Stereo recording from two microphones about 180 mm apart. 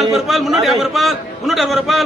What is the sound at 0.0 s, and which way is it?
A man's voice, centre (ahead or behind).